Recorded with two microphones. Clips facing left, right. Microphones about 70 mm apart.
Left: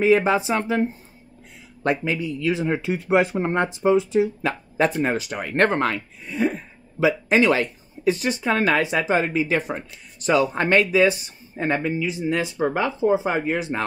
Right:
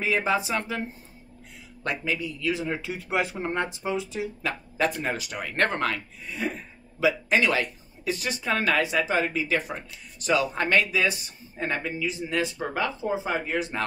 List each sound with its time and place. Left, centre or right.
0.0 s speech: left